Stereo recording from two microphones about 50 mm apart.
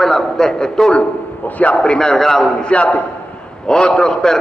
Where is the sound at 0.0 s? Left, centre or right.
Centre.